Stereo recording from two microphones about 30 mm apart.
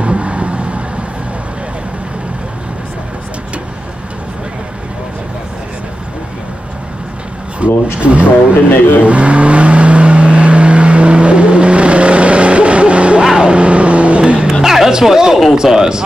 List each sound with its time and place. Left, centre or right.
0.0 s vehicle: right
7.6 s speech: right
9.0 s vehicle: right
14.2 s vehicle: right
14.6 s music: centre
15.5 s a man's voice: right